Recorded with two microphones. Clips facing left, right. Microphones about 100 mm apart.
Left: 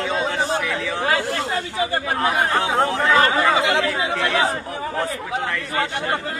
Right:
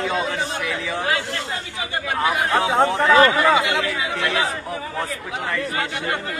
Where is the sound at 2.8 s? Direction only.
Centre (ahead or behind).